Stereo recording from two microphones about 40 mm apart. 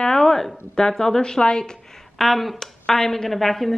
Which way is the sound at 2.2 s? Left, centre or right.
Centre.